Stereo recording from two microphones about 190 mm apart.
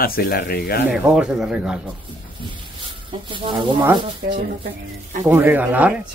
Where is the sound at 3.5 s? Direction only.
10° right (ahead or behind).